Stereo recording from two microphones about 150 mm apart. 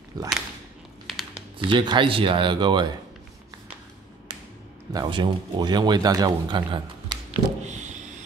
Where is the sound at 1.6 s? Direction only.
30° right (ahead or behind).